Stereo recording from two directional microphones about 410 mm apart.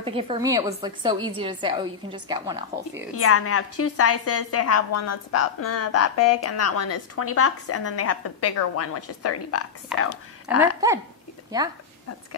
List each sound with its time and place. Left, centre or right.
0.0 s a woman's voice: centre
3.2 s a woman's voice: left
10.5 s a woman's voice: centre